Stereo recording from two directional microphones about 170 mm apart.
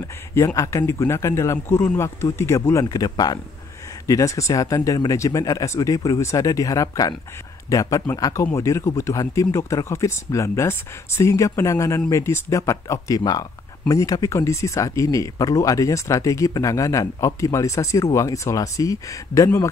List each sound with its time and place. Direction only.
0.3 s speech: 15° left (ahead or behind)